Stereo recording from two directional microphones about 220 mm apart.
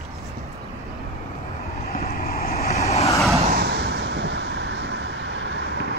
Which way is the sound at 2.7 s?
30° left (ahead or behind).